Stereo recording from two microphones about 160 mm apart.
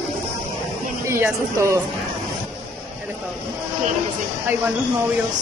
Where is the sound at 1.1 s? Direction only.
15° right (ahead or behind).